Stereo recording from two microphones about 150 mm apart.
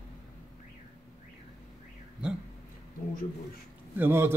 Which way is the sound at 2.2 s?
5° right (ahead or behind).